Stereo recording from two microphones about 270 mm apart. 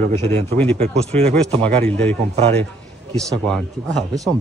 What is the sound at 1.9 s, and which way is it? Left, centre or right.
Speech, centre.